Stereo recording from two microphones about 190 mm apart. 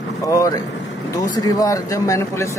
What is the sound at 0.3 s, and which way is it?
Speech, 15° left (ahead or behind).